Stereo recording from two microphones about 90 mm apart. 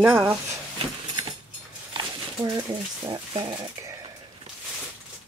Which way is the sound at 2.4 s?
55° right (ahead or behind).